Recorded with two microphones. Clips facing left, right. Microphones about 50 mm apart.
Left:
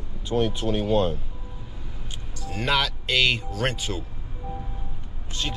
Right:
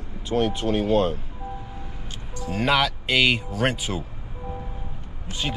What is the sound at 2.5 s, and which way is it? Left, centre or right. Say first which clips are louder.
Speech: right 3 dB; centre.